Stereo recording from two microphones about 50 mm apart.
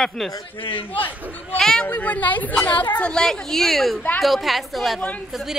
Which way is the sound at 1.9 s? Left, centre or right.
Left.